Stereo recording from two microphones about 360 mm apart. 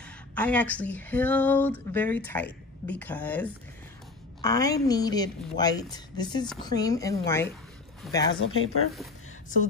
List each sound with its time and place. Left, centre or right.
0.0 s a woman's voice: centre
8.4 s speech: left